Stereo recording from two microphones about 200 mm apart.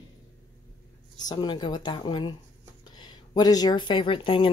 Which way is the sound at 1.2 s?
20° left (ahead or behind).